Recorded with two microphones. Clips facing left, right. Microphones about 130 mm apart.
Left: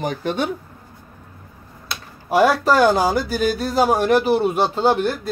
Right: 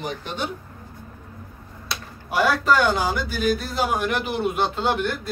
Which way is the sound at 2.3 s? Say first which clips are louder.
Left 4 dB; 35° left (ahead or behind).